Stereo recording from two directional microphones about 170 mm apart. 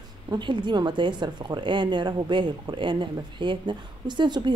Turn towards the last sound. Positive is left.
turn(degrees=-25)  # may be behind; listen again after turning